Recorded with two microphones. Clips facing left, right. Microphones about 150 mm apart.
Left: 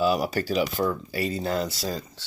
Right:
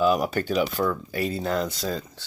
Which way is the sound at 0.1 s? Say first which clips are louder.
Right 1 dB; 5° left (ahead or behind).